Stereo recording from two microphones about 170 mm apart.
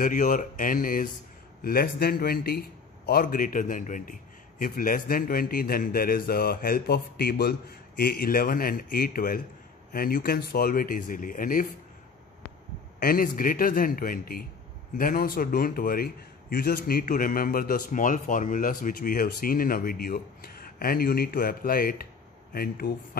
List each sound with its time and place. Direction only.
0.0 s a man's voice: 55° left (ahead or behind)
13.0 s a man's voice: 55° left (ahead or behind)